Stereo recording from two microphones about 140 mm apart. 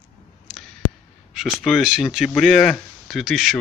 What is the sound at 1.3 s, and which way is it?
Speech, 5° right (ahead or behind).